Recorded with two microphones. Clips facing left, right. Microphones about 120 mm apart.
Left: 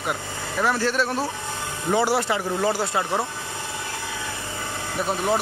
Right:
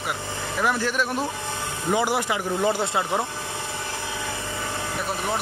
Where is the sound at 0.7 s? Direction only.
15° right (ahead or behind).